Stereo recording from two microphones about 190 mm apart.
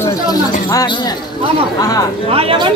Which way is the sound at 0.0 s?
20° left (ahead or behind).